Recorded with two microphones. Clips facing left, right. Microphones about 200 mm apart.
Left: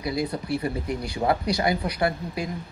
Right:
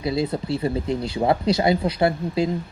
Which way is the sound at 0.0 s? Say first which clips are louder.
Right 4 dB; 25° right (ahead or behind).